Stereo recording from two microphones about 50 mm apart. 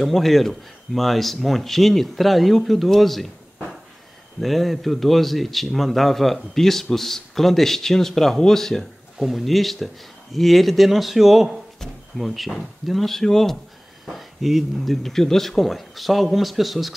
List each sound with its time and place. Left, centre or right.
0.0 s a man's voice: centre
4.4 s a man's voice: centre